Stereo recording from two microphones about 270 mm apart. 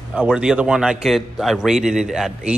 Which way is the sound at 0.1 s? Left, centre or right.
Centre.